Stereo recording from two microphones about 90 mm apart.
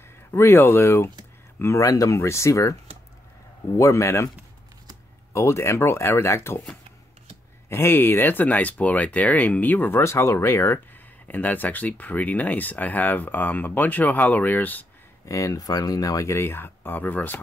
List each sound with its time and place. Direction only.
0.3 s speech: 25° left (ahead or behind)
3.7 s speech: 35° left (ahead or behind)
5.3 s speech: 30° left (ahead or behind)
7.7 s speech: 25° left (ahead or behind)
11.2 s speech: 20° left (ahead or behind)
15.2 s speech: 35° left (ahead or behind); by 17.4 s 20° left (ahead or behind)